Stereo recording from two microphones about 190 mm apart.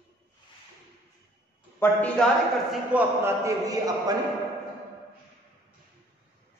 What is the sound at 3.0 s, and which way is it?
A man's voice, 15° right (ahead or behind).